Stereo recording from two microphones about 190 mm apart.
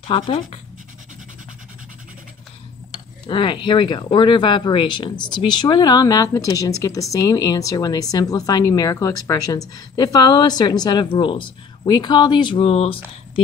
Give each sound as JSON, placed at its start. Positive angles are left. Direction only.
{"t": 0.0, "sound": "speech", "side_deg": 30}
{"t": 3.3, "sound": "speech", "side_deg": 25}